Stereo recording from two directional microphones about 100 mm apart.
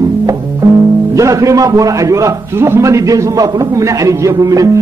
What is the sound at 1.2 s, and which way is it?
Speech, 35° right (ahead or behind).